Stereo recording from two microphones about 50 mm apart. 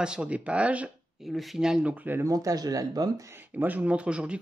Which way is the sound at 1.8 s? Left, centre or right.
Right.